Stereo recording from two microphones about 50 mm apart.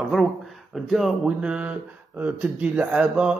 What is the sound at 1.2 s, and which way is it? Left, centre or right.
Speech, right.